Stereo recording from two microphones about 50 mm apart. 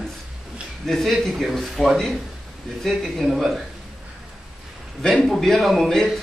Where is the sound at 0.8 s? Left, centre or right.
Centre.